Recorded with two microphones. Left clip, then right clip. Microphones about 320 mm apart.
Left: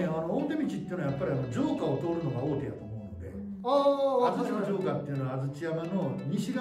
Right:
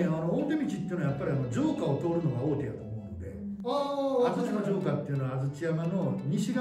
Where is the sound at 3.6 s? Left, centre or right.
Centre.